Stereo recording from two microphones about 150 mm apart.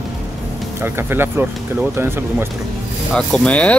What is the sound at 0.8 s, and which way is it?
Speech, 15° right (ahead or behind).